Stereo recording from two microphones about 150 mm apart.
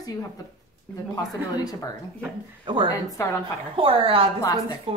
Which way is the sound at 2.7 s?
30° right (ahead or behind).